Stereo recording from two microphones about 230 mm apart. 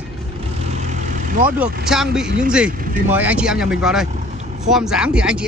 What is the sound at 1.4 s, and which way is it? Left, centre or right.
Speech, centre.